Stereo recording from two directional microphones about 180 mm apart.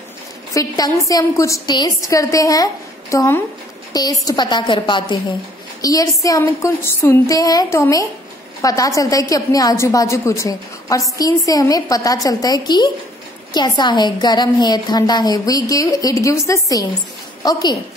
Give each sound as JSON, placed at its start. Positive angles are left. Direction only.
{"t": 0.6, "sound": "a woman's voice", "side_deg": 20}